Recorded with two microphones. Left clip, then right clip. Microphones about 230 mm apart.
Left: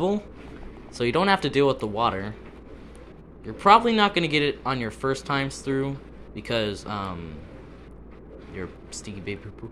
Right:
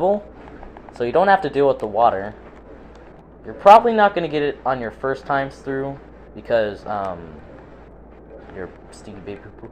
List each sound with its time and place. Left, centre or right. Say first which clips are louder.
0.9 s speech: right 6 dB; left
3.5 s speech: right 7 dB; left
8.5 s speech: right 2 dB; left